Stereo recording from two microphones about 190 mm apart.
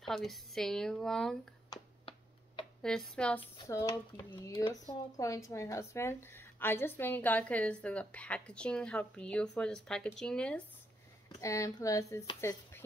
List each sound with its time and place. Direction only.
0.0 s speech: centre (ahead or behind)
1.7 s finger snapping: 25° left (ahead or behind)
2.8 s speech: 5° left (ahead or behind)
3.6 s speech: 15° left (ahead or behind)
11.4 s speech: 15° left (ahead or behind)